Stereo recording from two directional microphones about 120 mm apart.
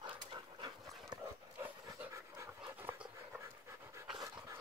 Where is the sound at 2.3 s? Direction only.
20° right (ahead or behind).